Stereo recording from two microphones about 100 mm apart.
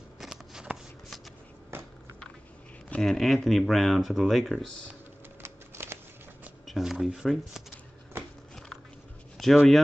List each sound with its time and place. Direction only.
0.2 s shuffling cards: 5° right (ahead or behind)
1.7 s a sound: 25° right (ahead or behind)
2.9 s speech: 5° left (ahead or behind)
5.4 s a sound: 25° right (ahead or behind)
6.6 s speech: centre (ahead or behind)
9.4 s speech: centre (ahead or behind)